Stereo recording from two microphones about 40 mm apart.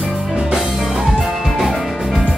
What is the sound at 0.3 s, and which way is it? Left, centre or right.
Music, centre.